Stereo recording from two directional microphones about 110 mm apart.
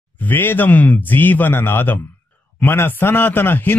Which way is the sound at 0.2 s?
15° left (ahead or behind).